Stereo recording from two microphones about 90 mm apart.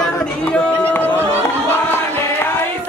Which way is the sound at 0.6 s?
15° left (ahead or behind).